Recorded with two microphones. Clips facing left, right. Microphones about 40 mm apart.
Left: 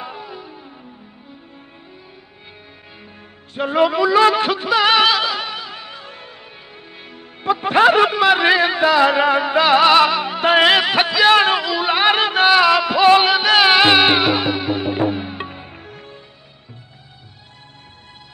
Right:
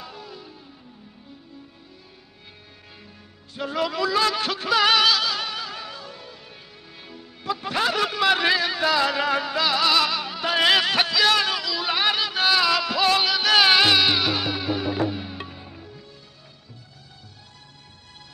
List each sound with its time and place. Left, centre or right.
0.0 s music: left
3.5 s music: left
10.6 s music: left